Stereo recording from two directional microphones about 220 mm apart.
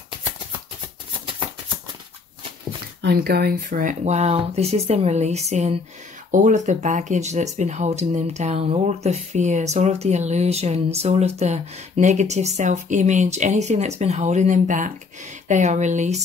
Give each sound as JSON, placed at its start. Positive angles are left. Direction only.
{"t": 3.0, "sound": "speech", "side_deg": -45}